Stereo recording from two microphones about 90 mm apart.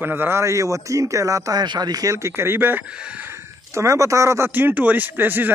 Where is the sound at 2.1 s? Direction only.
30° right (ahead or behind); by 3.3 s 10° right (ahead or behind).